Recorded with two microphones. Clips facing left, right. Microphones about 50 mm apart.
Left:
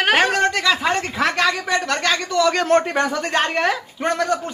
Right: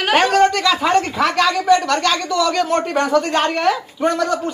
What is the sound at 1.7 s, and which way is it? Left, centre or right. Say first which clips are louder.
A woman's voice: right 5 dB; left.